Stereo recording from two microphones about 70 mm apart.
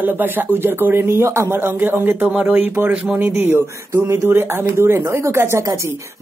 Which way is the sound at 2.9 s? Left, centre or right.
Centre.